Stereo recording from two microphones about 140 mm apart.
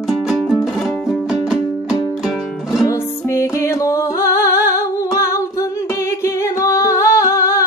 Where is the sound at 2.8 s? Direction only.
20° left (ahead or behind).